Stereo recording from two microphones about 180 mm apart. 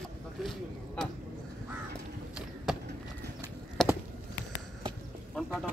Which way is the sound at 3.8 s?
5° left (ahead or behind).